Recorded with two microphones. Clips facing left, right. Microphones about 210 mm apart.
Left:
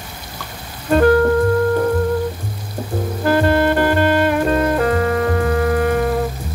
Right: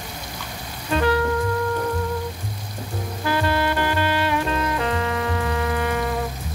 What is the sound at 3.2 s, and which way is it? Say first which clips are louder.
Music: left 7 dB; 50° left (ahead or behind).